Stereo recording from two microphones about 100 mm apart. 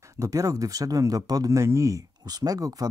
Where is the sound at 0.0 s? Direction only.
30° right (ahead or behind).